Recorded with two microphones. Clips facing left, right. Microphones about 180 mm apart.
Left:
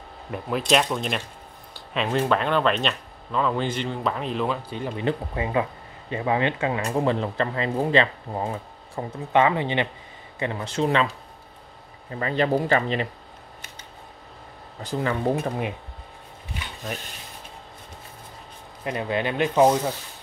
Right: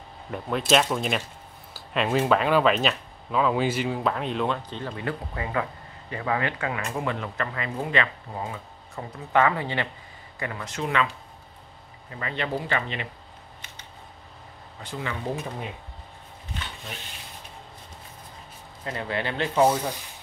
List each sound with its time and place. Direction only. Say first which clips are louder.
0.3 s speech: even; centre (ahead or behind); by 9.0 s 35° left (ahead or behind)
9.1 s speech: left 2 dB; 20° left (ahead or behind); by 13.1 s 40° left (ahead or behind)
14.8 s speech: left 7 dB; 40° left (ahead or behind); by 15.7 s 55° left (ahead or behind)
18.9 s speech: left 4 dB; 20° left (ahead or behind)